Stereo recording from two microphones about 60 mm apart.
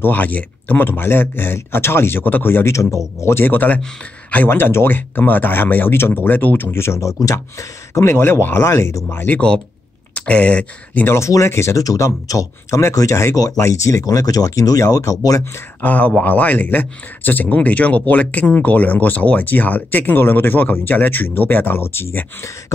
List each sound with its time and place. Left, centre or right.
0.0 s speech: left
2.7 s speech: left
3.2 s speech: left
3.4 s speech: left
4.5 s speech: left
6.8 s speech: left
9.1 s speech: left
10.1 s speech: left
11.1 s speech: left
11.8 s speech: left
15.8 s speech: left